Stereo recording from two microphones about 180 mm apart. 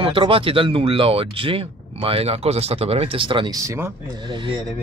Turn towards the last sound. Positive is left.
turn(degrees=-30)  # may be behind; listen again after turning